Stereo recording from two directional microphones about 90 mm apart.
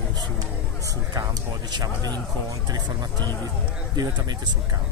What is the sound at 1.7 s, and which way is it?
Speech, 45° right (ahead or behind).